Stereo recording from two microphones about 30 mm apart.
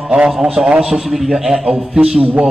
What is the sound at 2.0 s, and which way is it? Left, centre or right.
Speech, right.